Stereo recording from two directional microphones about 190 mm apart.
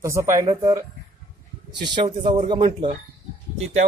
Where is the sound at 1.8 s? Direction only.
25° right (ahead or behind).